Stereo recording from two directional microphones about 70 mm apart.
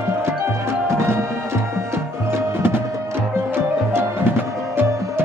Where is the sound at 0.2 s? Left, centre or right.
Right.